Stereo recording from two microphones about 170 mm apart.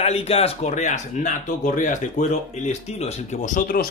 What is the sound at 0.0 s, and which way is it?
Speech, 40° left (ahead or behind).